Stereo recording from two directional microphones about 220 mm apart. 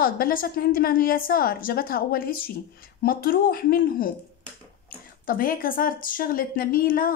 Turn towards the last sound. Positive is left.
turn(degrees=40)  # may be behind; listen again after turning